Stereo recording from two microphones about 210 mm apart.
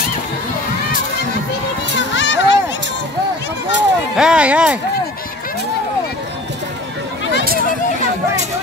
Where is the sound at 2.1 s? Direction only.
60° left (ahead or behind).